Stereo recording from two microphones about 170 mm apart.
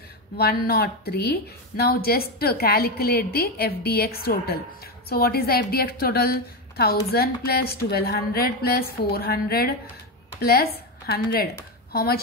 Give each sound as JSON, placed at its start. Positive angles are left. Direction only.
{"t": 0.4, "sound": "a woman's voice", "side_deg": 65}